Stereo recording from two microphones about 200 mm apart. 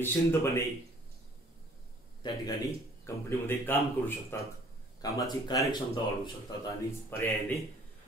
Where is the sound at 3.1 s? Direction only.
10° left (ahead or behind).